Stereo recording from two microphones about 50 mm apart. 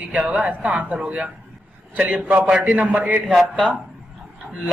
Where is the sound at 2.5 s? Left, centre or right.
Centre.